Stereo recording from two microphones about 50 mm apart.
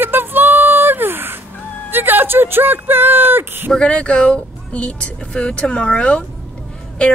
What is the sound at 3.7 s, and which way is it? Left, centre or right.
Speech, left.